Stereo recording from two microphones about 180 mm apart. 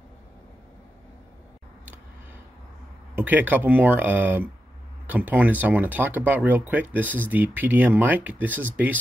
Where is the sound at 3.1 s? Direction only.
10° right (ahead or behind).